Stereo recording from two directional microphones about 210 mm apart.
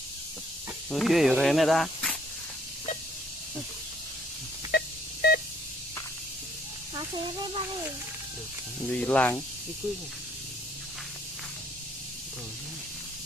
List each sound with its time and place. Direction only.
0.8 s speech: centre (ahead or behind)
4.6 s music: 50° left (ahead or behind)
8.8 s speech: 5° left (ahead or behind)